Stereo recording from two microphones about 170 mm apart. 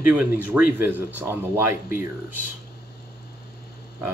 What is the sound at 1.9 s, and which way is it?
Speech, 55° left (ahead or behind).